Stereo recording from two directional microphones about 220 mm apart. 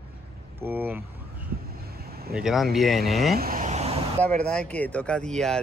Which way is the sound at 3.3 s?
40° right (ahead or behind).